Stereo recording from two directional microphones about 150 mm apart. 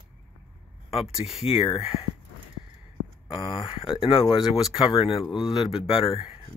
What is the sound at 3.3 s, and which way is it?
Speech, 35° left (ahead or behind).